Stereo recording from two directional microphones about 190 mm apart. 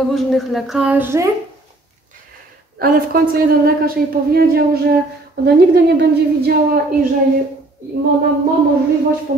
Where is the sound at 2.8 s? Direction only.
50° right (ahead or behind).